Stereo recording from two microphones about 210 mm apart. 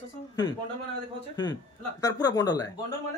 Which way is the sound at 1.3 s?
20° left (ahead or behind).